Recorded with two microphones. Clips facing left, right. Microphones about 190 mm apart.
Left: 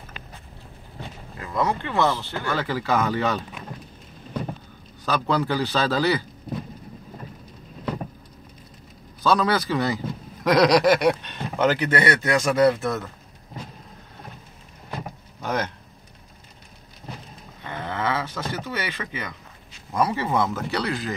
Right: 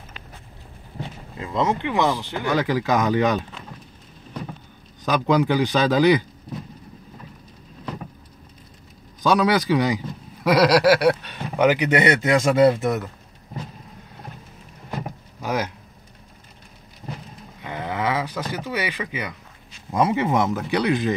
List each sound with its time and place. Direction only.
1.4 s a man's voice: 20° right (ahead or behind)
5.0 s a man's voice: 15° right (ahead or behind)
9.2 s a man's voice: 15° right (ahead or behind)
15.4 s a sound: 5° right (ahead or behind)
17.6 s a sound: 15° right (ahead or behind)
19.9 s speech: 20° right (ahead or behind)